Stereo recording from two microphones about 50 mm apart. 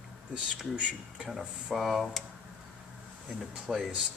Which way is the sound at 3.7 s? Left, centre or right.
Centre.